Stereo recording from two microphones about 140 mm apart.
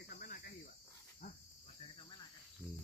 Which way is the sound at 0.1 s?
90° left.